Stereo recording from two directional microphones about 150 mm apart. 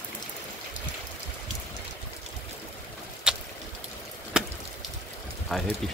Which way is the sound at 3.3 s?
5° right (ahead or behind).